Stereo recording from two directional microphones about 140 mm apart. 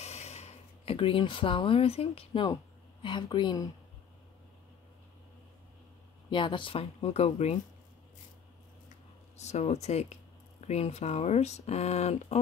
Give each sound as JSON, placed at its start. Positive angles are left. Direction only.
{"t": 0.0, "sound": "a sound", "side_deg": 50}
{"t": 3.0, "sound": "a woman's voice", "side_deg": 35}
{"t": 6.3, "sound": "speech", "side_deg": 35}
{"t": 9.4, "sound": "speech", "side_deg": 50}